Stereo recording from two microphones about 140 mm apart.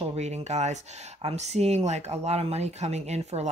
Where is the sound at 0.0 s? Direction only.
50° right (ahead or behind).